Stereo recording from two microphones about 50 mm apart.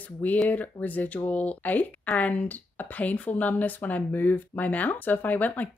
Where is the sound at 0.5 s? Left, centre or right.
Left.